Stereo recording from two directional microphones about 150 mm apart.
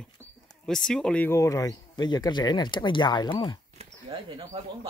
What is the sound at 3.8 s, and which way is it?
Speech, 40° right (ahead or behind).